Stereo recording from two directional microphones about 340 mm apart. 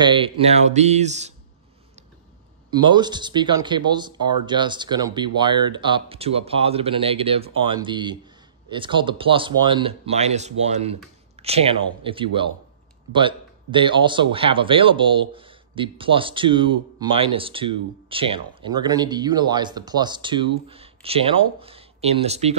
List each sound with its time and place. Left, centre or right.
0.0 s speech: centre
2.7 s speech: centre